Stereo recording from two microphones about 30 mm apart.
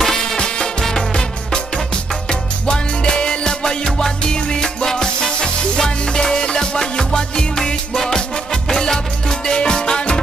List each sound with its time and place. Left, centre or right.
0.0 s music: centre
0.4 s music: left
2.6 s music: left